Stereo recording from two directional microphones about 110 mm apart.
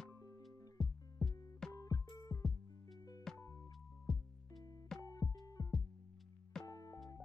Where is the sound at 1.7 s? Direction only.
35° left (ahead or behind).